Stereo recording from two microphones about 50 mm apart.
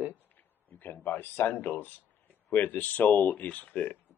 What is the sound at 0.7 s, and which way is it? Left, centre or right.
Speech, left.